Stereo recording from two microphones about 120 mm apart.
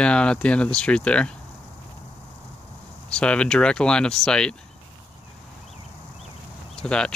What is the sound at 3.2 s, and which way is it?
Speech, 10° left (ahead or behind).